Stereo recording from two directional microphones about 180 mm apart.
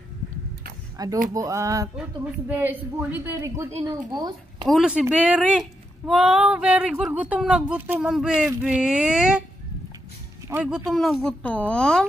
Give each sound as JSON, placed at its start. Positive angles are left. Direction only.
{"t": 0.9, "sound": "speech", "side_deg": -20}
{"t": 4.6, "sound": "speech", "side_deg": -5}
{"t": 10.5, "sound": "speech", "side_deg": -5}